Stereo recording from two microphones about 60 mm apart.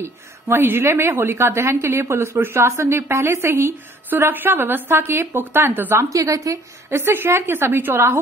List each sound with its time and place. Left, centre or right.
0.0 s a woman's voice: right
5.9 s a woman's voice: right
6.9 s a woman's voice: right